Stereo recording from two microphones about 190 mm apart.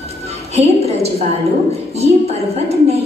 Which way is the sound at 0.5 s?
35° right (ahead or behind).